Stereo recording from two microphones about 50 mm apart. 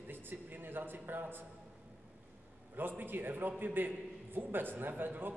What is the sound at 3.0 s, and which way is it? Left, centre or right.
A man's voice, right.